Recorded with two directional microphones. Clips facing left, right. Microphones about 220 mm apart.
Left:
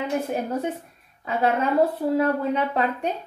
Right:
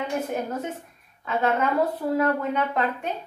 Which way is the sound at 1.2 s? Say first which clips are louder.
Left 1 dB; 30° left (ahead or behind).